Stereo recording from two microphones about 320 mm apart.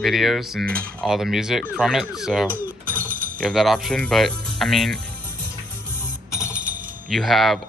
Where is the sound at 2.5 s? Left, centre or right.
Centre.